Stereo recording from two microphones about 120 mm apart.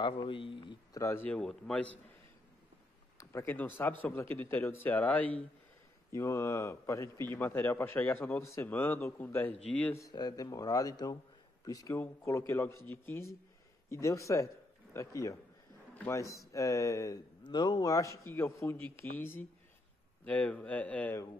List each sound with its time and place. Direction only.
0.0 s speech: 45° left (ahead or behind)
0.9 s speech: 25° left (ahead or behind)
1.2 s a man's voice: 5° left (ahead or behind)
3.2 s a man's voice: 20° left (ahead or behind)
6.1 s a man's voice: 25° left (ahead or behind)
9.9 s speech: 30° left (ahead or behind)
15.9 s a sound: 15° left (ahead or behind)
16.2 s a man's voice: 25° left (ahead or behind)